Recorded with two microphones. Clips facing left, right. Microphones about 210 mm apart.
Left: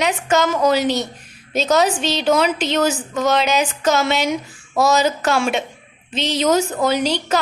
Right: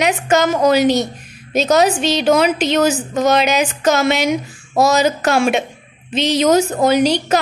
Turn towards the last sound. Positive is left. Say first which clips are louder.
# right 5 dB
turn(degrees=-15)  # may be behind; listen again after turning